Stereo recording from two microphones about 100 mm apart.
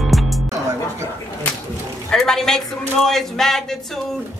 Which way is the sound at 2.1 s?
5° left (ahead or behind).